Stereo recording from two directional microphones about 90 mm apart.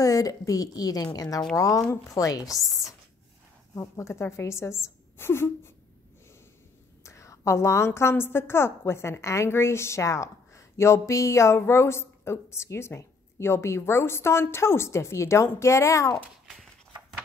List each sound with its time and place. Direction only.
0.0 s a woman's voice: 40° left (ahead or behind)
3.7 s a woman's voice: 30° left (ahead or behind)
7.0 s a woman's voice: 35° left (ahead or behind)